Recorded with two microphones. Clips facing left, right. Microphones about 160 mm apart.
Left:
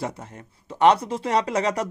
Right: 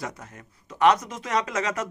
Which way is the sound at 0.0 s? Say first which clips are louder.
Left 4 dB; 30° left (ahead or behind).